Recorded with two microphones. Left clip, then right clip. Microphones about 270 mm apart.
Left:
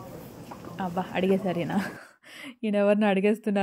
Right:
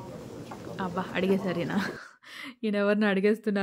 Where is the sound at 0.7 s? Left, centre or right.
Centre.